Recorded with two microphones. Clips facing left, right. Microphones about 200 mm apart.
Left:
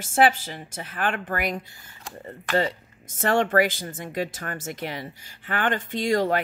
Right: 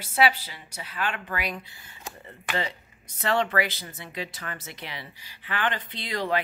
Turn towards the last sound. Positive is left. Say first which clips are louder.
# left 7 dB
turn(degrees=45)  # may be behind; listen again after turning